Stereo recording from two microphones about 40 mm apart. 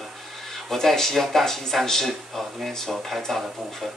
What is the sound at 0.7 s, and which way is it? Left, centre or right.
Speech, centre.